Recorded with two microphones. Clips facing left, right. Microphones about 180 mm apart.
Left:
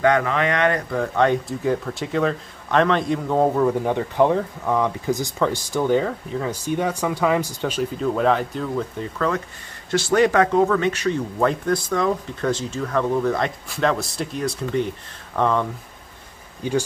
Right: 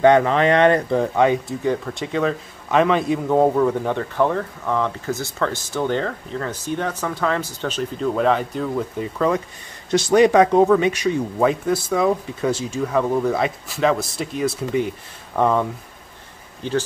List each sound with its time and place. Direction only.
0.0 s speech: 25° right (ahead or behind)
1.1 s speech: 5° right (ahead or behind)
3.6 s speech: 15° left (ahead or behind)
9.8 s speech: 15° right (ahead or behind)